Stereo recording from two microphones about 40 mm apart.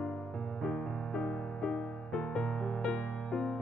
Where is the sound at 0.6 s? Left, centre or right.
Left.